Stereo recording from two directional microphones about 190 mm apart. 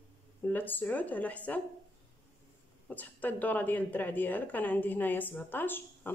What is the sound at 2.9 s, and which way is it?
Speech, 10° left (ahead or behind).